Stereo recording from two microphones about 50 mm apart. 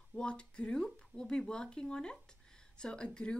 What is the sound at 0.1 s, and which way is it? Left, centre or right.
A woman's voice, centre.